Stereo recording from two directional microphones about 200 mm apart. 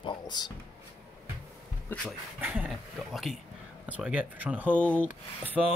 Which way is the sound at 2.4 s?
5° right (ahead or behind).